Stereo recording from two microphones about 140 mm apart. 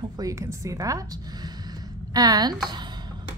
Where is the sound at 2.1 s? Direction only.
25° right (ahead or behind).